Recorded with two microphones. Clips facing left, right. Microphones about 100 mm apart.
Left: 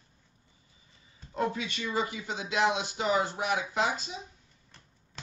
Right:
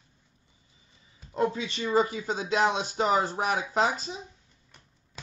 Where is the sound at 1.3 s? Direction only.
30° right (ahead or behind).